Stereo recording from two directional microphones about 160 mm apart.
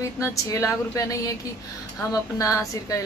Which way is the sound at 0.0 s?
20° left (ahead or behind).